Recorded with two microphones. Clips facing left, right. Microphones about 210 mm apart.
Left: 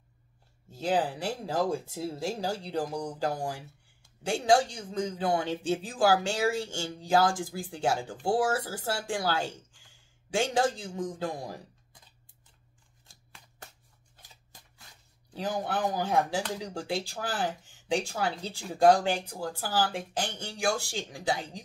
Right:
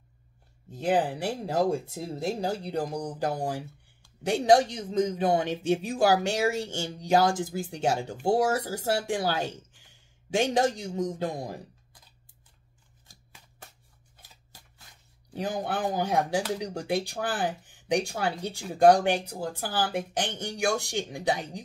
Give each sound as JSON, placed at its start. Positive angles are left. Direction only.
{"t": 0.7, "sound": "speech", "side_deg": -20}
{"t": 15.3, "sound": "speech", "side_deg": -20}